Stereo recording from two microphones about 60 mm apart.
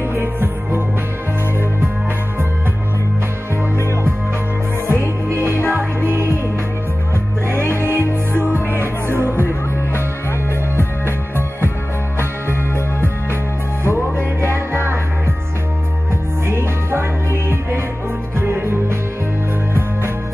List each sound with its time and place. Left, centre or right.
0.1 s music: right
4.8 s music: right
7.4 s music: right
13.8 s music: right
16.4 s music: right